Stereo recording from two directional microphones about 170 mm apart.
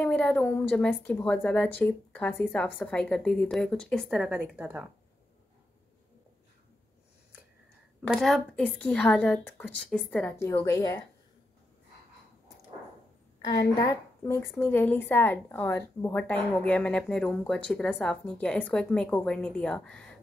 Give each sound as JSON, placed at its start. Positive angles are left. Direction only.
{"t": 0.0, "sound": "a woman's voice", "side_deg": 5}
{"t": 8.1, "sound": "speech", "side_deg": 0}
{"t": 10.3, "sound": "speech", "side_deg": 15}
{"t": 13.5, "sound": "a woman's voice", "side_deg": 20}